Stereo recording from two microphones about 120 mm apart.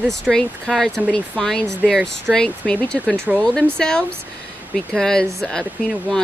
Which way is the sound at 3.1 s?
15° right (ahead or behind).